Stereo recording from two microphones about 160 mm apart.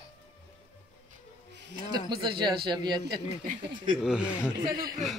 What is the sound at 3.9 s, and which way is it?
Speech, 5° right (ahead or behind).